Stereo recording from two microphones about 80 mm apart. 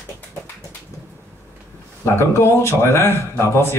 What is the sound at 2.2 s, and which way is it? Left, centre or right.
Speech, left.